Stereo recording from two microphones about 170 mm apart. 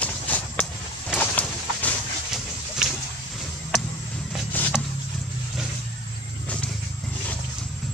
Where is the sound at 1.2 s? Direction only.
10° left (ahead or behind).